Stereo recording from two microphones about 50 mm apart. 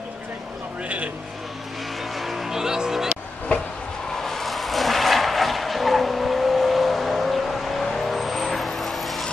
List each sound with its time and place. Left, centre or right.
0.8 s vehicle: right
2.1 s music: centre
4.2 s vehicle: centre